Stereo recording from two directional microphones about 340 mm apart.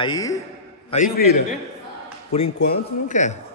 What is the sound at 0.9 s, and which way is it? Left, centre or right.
Speech, left.